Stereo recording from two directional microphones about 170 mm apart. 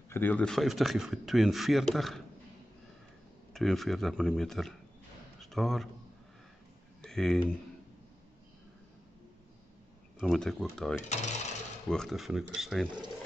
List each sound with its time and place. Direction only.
0.1 s speech: 10° left (ahead or behind)
3.5 s speech: centre (ahead or behind)
5.4 s a sound: centre (ahead or behind)
7.0 s speech: 5° left (ahead or behind)
10.1 s speech: centre (ahead or behind)
11.0 s coin: 45° left (ahead or behind)
11.9 s speech: centre (ahead or behind)